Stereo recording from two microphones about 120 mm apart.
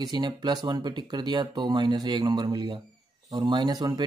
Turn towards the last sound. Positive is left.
turn(degrees=-35)  # may be behind; listen again after turning